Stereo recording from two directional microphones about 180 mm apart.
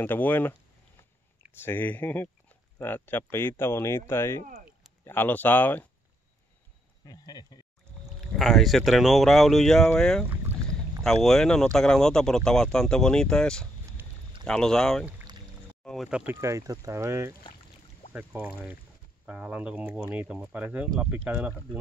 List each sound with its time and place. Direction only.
0.0 s speech: 10° left (ahead or behind)
1.6 s speech: 10° left (ahead or behind)
7.1 s speech: 20° left (ahead or behind)
8.2 s speech: centre (ahead or behind)